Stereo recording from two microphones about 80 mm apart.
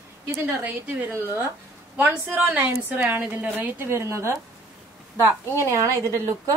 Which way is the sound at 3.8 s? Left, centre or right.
Right.